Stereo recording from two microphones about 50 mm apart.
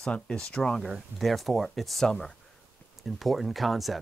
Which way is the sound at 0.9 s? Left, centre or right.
Centre.